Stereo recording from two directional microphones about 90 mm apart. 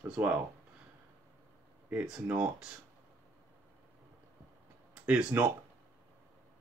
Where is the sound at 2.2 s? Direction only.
15° right (ahead or behind).